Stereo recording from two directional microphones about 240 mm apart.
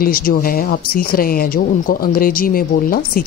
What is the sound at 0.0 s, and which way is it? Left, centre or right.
A woman's voice, left.